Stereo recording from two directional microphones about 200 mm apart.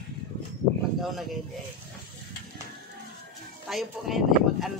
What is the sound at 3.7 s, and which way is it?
Speech, centre (ahead or behind).